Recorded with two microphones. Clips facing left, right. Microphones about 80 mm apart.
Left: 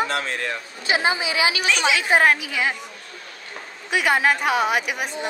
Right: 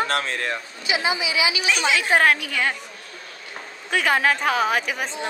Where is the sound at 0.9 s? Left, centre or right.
Left.